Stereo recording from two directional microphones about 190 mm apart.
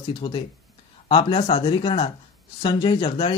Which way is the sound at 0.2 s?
30° left (ahead or behind).